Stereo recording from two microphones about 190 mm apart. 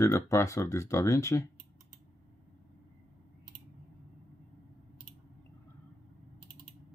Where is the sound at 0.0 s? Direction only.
15° left (ahead or behind).